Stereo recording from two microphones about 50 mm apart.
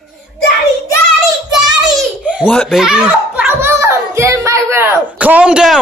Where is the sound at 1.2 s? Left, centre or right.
Centre.